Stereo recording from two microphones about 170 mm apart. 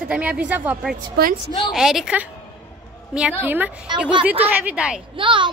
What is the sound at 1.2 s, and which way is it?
Speech, 65° right (ahead or behind).